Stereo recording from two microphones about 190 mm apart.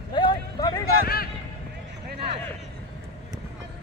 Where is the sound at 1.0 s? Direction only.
55° left (ahead or behind).